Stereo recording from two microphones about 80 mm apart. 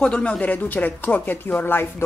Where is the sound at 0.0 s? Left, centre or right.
Centre.